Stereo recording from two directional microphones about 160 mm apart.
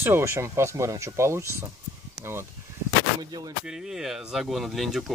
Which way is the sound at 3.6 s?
5° right (ahead or behind).